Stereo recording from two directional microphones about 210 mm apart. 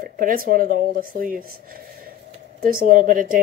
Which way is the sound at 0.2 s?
45° right (ahead or behind).